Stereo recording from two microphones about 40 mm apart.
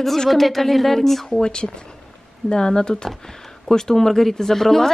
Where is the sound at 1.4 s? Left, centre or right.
Centre.